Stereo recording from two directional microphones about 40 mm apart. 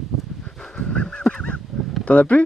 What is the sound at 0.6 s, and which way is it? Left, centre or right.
Fowl, centre.